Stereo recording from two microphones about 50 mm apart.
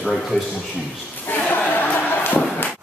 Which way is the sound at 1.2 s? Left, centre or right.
Left.